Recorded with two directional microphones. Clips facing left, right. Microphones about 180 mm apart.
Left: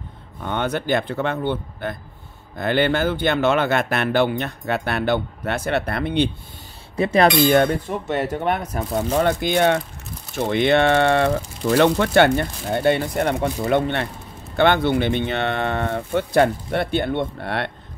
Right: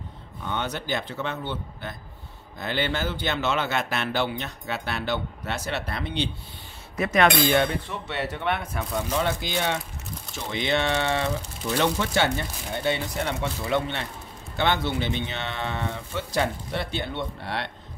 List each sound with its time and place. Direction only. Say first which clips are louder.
0.4 s speech: left 6 dB; 55° left (ahead or behind)
7.0 s speech: left 5 dB; 30° left (ahead or behind)
7.4 s speech: left 6 dB; 45° left (ahead or behind)
9.1 s speech: left 8 dB; 55° left (ahead or behind)